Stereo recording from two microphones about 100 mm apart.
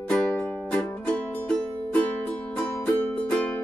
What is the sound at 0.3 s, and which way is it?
Music, 20° left (ahead or behind).